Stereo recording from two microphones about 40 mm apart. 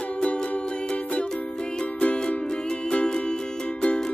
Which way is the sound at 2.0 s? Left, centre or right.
Left.